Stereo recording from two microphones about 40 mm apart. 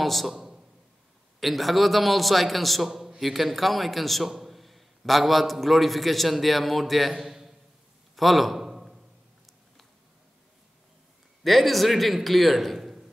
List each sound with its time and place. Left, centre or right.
0.0 s a man's voice: centre
0.3 s a man's voice: centre
1.4 s a man's voice: centre
2.9 s a sound: centre
3.2 s a man's voice: centre
8.2 s a sound: centre
11.4 s a man's voice: centre